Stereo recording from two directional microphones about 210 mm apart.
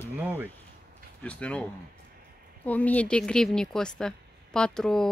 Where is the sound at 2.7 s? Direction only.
5° left (ahead or behind).